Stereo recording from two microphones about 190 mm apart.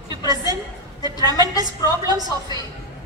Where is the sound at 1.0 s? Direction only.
20° right (ahead or behind).